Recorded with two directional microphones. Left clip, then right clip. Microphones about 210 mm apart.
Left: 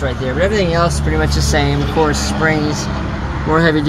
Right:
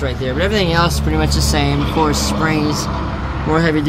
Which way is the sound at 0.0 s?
15° right (ahead or behind).